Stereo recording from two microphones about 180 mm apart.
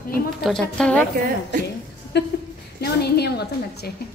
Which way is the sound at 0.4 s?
5° left (ahead or behind).